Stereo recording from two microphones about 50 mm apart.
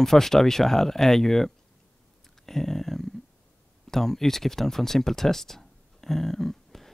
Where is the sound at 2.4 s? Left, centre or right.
Centre.